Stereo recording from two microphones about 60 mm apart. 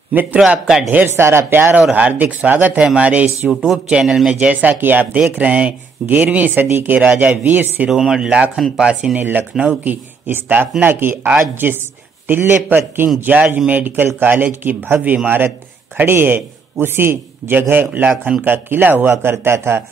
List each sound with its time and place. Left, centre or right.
0.1 s speech: right
0.5 s speech: centre
0.8 s speech: right
1.1 s a man's voice: right
1.9 s speech: right
3.6 s speech: centre
4.3 s speech: right
5.1 s speech: right
7.9 s speech: centre
9.1 s a man's voice: right
19.3 s a man's voice: right